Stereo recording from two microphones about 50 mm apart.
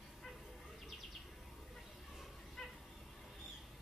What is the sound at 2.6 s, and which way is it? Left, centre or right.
Cat, centre.